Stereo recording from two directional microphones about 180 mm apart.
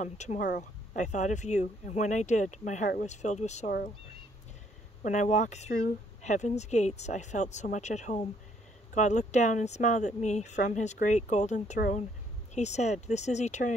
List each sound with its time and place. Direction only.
0.0 s a woman's voice: 40° left (ahead or behind)
5.0 s a woman's voice: 40° left (ahead or behind)